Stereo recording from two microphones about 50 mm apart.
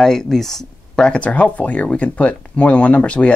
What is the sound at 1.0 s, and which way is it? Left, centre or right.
Speech, left.